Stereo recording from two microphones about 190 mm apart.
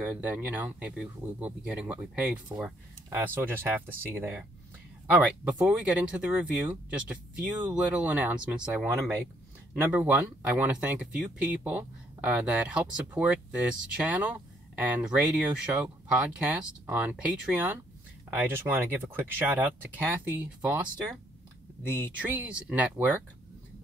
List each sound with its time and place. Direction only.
0.0 s speech: 10° right (ahead or behind)
22.2 s speech: 10° right (ahead or behind)